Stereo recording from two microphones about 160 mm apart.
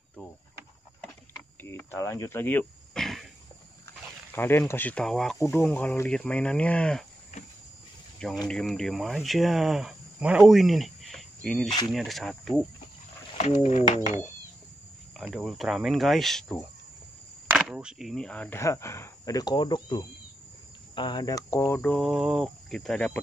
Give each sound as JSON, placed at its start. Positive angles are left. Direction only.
{"t": 1.6, "sound": "a sound", "side_deg": 15}
{"t": 4.3, "sound": "speech", "side_deg": 15}
{"t": 8.5, "sound": "speech", "side_deg": 5}
{"t": 13.4, "sound": "speech", "side_deg": 45}
{"t": 15.1, "sound": "speech", "side_deg": 0}
{"t": 17.6, "sound": "speech", "side_deg": -5}